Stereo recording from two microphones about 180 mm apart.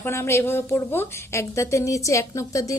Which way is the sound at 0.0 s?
15° left (ahead or behind).